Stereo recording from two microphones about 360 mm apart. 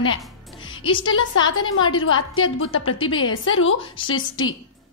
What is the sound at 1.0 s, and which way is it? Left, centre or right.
A woman's voice, left.